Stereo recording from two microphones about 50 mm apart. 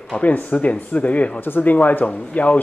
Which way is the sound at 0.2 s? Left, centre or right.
Left.